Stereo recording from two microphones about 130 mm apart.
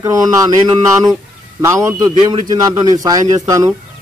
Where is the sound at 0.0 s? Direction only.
25° right (ahead or behind).